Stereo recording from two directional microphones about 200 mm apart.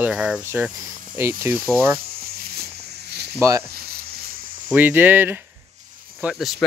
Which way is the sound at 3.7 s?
50° right (ahead or behind).